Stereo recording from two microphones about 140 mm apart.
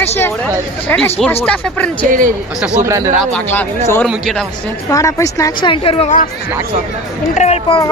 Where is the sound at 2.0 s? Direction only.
70° right (ahead or behind).